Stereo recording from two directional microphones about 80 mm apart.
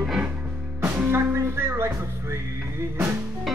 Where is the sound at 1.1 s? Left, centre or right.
Right.